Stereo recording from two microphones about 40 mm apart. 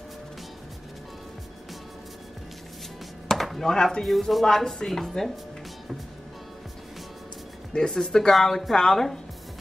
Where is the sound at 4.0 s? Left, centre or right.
Centre.